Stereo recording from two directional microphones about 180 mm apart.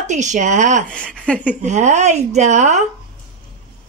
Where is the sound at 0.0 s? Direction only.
40° right (ahead or behind).